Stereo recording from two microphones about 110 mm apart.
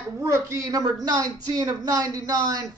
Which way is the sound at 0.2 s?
30° right (ahead or behind).